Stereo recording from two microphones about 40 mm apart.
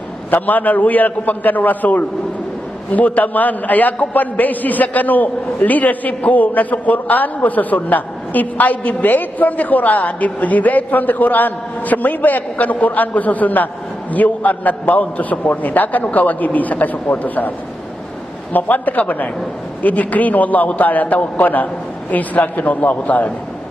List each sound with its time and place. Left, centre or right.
0.3 s a man's voice: left
18.5 s a man's voice: left